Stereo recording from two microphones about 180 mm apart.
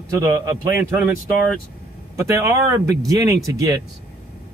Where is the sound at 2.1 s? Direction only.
15° right (ahead or behind).